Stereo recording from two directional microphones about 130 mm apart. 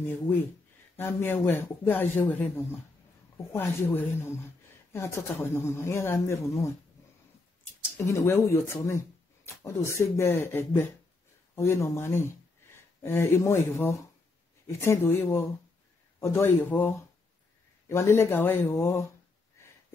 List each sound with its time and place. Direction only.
0.0 s speech: 15° left (ahead or behind)
8.0 s speech: 20° left (ahead or behind)